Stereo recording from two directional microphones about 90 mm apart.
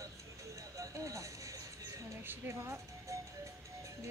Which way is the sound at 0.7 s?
40° right (ahead or behind).